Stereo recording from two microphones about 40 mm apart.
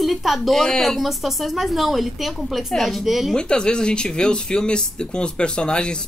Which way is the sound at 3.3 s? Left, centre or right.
Left.